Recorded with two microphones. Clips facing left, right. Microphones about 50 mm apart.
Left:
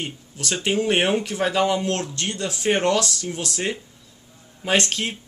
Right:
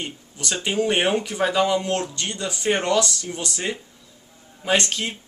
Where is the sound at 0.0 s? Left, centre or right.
Centre.